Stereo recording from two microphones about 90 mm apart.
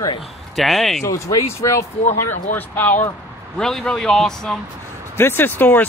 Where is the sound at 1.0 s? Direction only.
35° left (ahead or behind).